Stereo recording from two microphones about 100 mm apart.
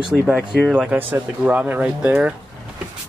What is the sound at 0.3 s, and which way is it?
Speech, 10° right (ahead or behind).